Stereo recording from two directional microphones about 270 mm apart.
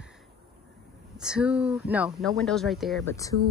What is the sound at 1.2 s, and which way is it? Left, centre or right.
Speech, centre.